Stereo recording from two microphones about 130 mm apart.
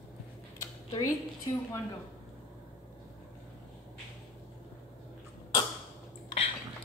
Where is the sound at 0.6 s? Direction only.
25° left (ahead or behind).